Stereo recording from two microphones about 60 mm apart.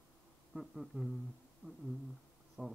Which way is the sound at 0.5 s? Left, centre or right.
Centre.